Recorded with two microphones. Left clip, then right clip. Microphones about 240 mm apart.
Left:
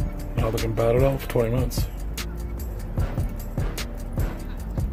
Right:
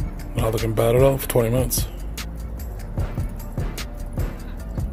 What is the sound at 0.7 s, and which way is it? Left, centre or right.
Speech, right.